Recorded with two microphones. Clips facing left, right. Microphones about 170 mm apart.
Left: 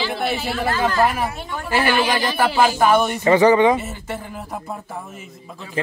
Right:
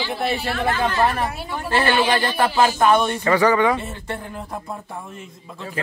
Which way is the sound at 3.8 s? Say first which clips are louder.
Even; 5° left (ahead or behind).